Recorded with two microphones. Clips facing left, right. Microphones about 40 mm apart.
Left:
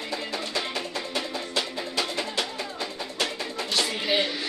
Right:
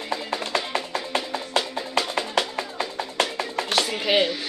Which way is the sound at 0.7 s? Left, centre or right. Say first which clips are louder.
Right 4 dB; right.